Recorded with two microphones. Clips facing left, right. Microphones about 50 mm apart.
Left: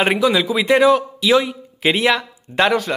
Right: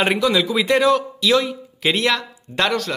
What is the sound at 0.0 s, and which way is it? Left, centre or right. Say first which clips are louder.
Speech: left 2 dB; centre.